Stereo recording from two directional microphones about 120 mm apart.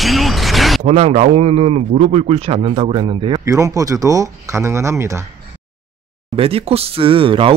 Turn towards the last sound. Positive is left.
turn(degrees=-45)  # may be behind; listen again after turning